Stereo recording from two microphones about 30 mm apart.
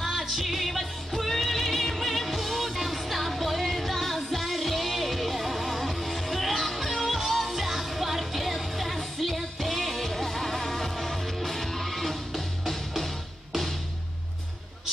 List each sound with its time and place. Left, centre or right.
0.2 s music: centre